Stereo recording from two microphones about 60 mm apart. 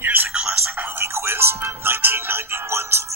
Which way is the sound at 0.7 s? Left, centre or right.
Right.